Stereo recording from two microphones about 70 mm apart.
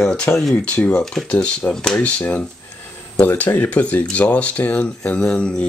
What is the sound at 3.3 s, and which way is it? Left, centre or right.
Speech, left.